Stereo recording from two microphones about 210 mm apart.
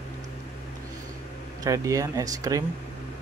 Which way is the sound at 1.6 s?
15° right (ahead or behind).